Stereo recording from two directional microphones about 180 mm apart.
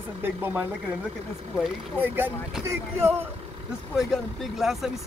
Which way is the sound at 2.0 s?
10° right (ahead or behind).